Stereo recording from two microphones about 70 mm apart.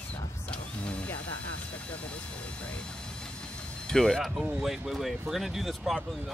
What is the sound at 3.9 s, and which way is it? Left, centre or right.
Speech, centre.